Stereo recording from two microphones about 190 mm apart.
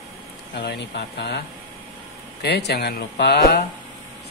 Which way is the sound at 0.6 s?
60° left (ahead or behind).